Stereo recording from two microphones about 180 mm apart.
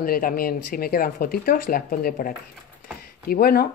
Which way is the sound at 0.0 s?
50° left (ahead or behind).